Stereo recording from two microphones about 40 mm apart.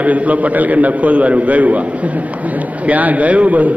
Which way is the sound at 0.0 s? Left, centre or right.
Right.